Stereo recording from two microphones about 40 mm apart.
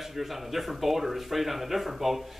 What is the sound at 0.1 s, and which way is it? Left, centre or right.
Speech, centre.